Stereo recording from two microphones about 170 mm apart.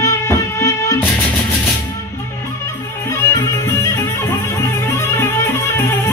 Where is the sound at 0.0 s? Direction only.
15° left (ahead or behind).